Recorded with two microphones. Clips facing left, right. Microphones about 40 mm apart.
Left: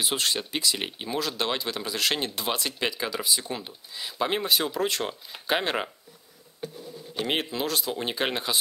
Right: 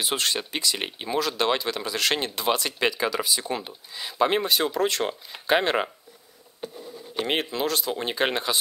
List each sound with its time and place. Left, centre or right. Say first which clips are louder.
0.0 s speech: right 1 dB; centre
7.2 s speech: right 2 dB; centre